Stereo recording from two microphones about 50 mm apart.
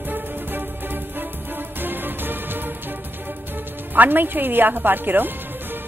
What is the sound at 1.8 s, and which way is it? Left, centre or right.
Music, right.